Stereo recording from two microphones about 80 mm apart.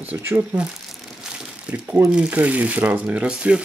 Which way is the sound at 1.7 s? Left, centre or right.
Centre.